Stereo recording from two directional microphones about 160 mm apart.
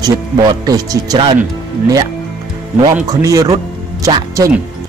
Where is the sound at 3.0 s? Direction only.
20° right (ahead or behind).